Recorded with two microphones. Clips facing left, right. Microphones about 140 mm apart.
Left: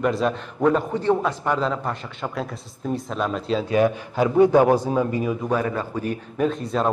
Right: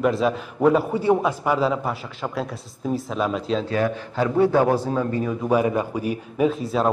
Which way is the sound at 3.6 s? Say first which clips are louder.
Left 3 dB; 15° left (ahead or behind).